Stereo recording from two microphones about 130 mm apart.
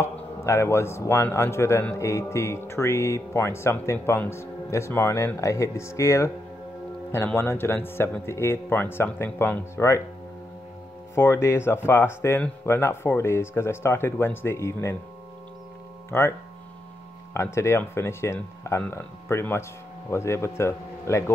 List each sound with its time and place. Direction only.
0.0 s speech: 20° left (ahead or behind)
11.1 s speech: 20° left (ahead or behind)
16.1 s speech: 20° left (ahead or behind)